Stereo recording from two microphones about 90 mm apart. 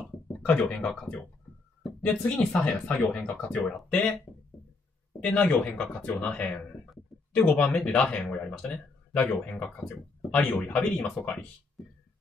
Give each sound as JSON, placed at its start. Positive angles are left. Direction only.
{"t": 0.0, "sound": "speech", "side_deg": 10}
{"t": 5.2, "sound": "speech", "side_deg": 15}